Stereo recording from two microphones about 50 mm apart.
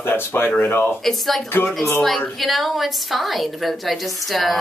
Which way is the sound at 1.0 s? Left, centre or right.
Centre.